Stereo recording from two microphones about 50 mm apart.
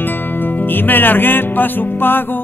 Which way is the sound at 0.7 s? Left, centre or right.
Left.